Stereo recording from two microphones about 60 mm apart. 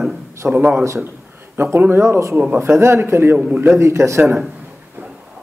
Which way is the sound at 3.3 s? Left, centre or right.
Right.